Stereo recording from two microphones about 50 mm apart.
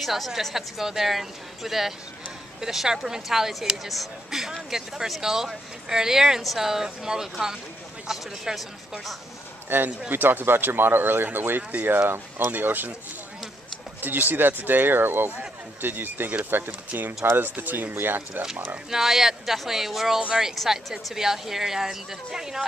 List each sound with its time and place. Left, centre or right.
0.0 s a woman's voice: centre
9.8 s speech: right
10.1 s speech: right
14.0 s speech: right
18.9 s speech: centre